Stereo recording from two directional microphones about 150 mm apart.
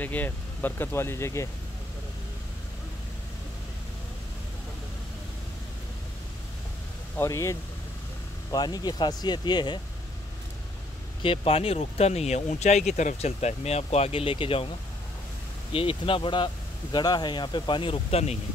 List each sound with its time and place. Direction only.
0.0 s speech: 10° left (ahead or behind)
7.2 s speech: 20° left (ahead or behind)
11.2 s speech: 40° left (ahead or behind)
15.7 s speech: 35° left (ahead or behind)